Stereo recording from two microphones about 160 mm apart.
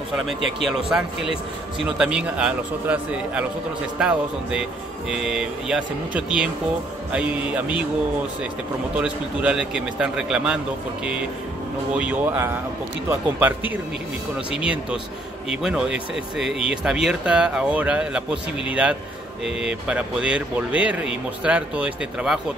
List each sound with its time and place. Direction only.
0.3 s speech: centre (ahead or behind)
8.9 s speech: 10° right (ahead or behind)
11.9 s speech: 10° right (ahead or behind)